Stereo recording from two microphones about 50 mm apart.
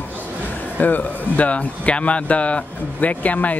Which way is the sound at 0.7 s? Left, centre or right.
Left.